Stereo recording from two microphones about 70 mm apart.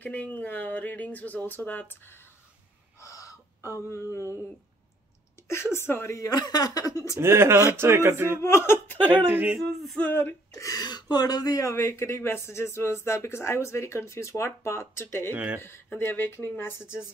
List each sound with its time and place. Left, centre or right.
0.0 s speech: left
3.0 s gasp: left
5.5 s speech: left
6.2 s speech: left
7.2 s speech: right
8.4 s speech: left
9.3 s speech: right
9.6 s a sound: centre
9.9 s speech: left
10.5 s speech: left
10.8 s speech: left
15.3 s speech: right
15.6 s speech: left